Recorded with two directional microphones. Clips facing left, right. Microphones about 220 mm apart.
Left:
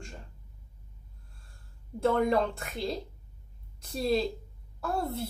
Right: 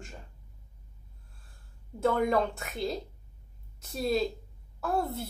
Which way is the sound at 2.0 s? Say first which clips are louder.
Left 1 dB; 30° left (ahead or behind).